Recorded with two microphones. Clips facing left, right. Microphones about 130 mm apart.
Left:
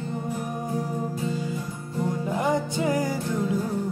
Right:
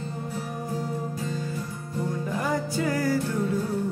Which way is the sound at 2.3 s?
20° left (ahead or behind).